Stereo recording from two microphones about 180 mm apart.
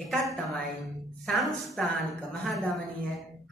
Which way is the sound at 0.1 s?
Centre (ahead or behind).